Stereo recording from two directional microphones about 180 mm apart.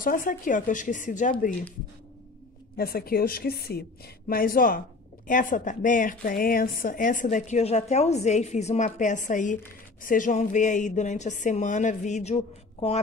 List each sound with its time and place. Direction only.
0.0 s a woman's voice: 50° left (ahead or behind)
2.8 s a woman's voice: 55° left (ahead or behind); by 13.0 s 35° left (ahead or behind)